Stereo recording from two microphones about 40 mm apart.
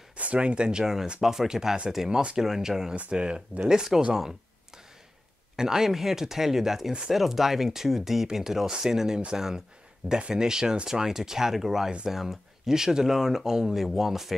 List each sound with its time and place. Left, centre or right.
0.2 s speech: right; by 4.4 s centre
5.6 s speech: centre